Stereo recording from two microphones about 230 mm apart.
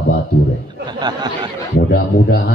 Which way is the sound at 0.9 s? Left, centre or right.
Centre.